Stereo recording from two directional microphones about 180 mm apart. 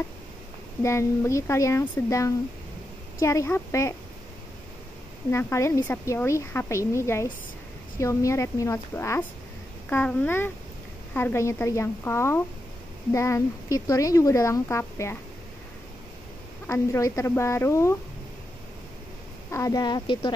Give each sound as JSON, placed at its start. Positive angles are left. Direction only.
{"t": 0.8, "sound": "speech", "side_deg": 15}
{"t": 5.3, "sound": "speech", "side_deg": 15}
{"t": 16.6, "sound": "speech", "side_deg": 15}
{"t": 19.5, "sound": "speech", "side_deg": 20}